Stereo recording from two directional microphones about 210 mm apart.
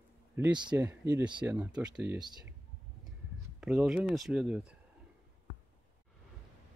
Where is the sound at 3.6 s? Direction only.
5° right (ahead or behind).